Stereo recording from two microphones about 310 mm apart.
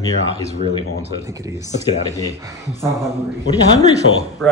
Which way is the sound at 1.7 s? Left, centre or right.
Centre.